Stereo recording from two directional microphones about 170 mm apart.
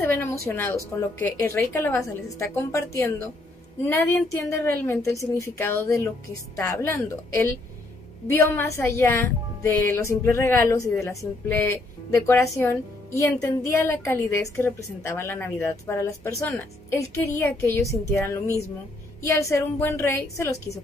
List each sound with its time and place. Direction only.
0.0 s a woman's voice: 15° left (ahead or behind)